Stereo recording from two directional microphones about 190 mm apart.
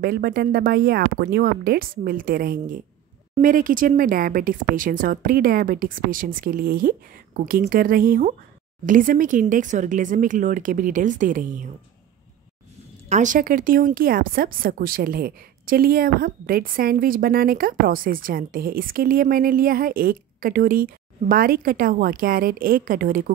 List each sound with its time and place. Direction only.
0.0 s a woman's voice: 55° right (ahead or behind)
13.1 s a woman's voice: 40° right (ahead or behind)